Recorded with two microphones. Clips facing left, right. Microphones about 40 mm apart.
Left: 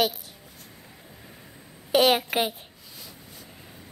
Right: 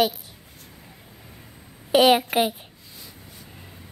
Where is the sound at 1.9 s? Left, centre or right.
Centre.